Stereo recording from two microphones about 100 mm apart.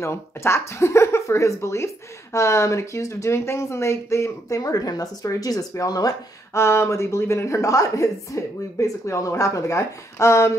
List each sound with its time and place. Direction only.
0.0 s speech: 25° left (ahead or behind)